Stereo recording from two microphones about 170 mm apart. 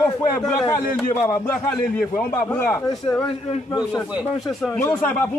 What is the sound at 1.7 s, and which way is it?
Speech, 10° left (ahead or behind).